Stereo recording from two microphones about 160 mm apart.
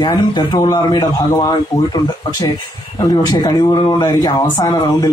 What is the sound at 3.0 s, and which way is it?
Speech, 25° left (ahead or behind).